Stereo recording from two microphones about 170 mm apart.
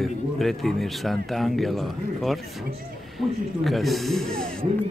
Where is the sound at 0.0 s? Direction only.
Centre (ahead or behind).